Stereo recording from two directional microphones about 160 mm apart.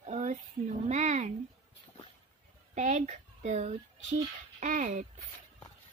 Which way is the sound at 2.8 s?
50° right (ahead or behind).